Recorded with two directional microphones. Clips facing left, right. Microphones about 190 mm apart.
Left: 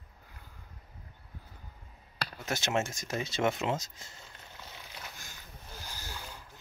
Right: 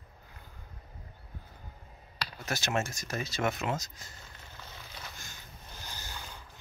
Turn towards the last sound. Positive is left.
turn(degrees=5)  # may be behind; listen again after turning